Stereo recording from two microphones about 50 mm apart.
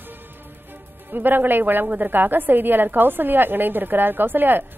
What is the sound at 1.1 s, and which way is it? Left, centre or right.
A woman's voice, right.